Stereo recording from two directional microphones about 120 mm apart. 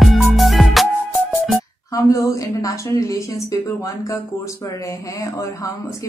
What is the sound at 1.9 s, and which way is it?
Speech, 30° left (ahead or behind).